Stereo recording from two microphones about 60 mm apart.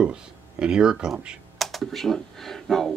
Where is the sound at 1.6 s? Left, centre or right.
Centre.